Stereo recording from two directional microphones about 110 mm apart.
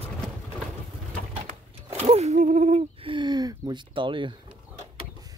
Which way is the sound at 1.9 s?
75° right (ahead or behind).